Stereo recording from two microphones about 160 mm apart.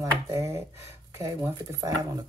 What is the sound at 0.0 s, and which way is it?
Speech, 20° right (ahead or behind).